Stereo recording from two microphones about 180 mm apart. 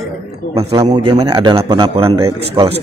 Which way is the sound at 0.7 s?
20° right (ahead or behind).